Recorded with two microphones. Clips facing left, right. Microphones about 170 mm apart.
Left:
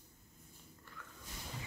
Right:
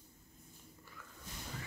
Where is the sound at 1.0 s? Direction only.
5° right (ahead or behind).